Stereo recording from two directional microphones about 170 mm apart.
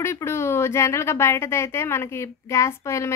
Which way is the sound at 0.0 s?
15° left (ahead or behind).